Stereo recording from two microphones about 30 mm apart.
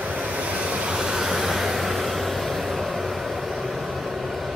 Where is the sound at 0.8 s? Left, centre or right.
Right.